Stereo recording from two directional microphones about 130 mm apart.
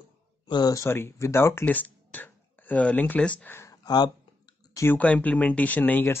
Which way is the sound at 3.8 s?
35° left (ahead or behind).